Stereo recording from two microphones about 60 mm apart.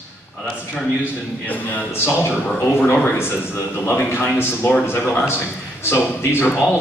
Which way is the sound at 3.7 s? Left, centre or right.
Left.